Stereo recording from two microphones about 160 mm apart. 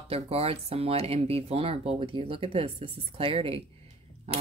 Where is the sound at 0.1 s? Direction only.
40° right (ahead or behind).